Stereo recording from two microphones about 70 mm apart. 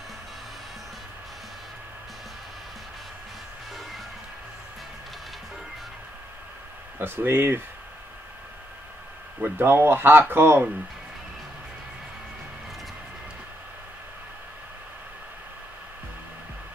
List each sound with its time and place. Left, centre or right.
7.0 s speech: right
9.4 s speech: right